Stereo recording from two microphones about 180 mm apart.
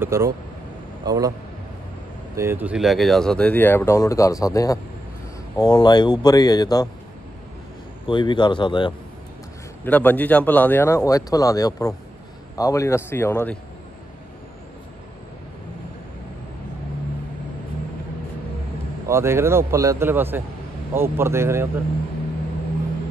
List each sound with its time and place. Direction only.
0.0 s speech: 15° right (ahead or behind)
2.3 s speech: 10° right (ahead or behind); by 6.9 s 20° left (ahead or behind)
8.1 s speech: 25° left (ahead or behind)
9.8 s speech: 10° left (ahead or behind)
19.0 s speech: 15° right (ahead or behind)